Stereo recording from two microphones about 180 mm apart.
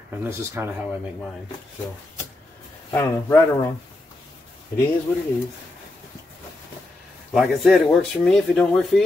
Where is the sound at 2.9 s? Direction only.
15° left (ahead or behind).